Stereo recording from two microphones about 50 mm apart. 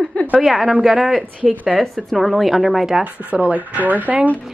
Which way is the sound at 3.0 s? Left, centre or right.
Right.